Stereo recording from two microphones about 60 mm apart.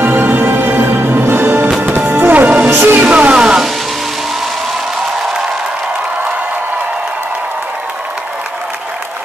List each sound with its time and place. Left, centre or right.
0.0 s music: right
2.7 s a sound: right
3.0 s music: right